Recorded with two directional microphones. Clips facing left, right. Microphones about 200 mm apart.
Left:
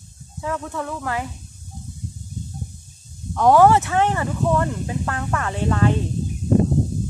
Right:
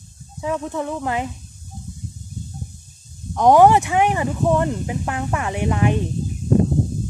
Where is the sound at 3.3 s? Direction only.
15° right (ahead or behind).